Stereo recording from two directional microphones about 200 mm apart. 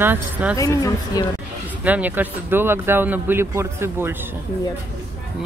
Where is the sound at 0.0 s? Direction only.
10° right (ahead or behind).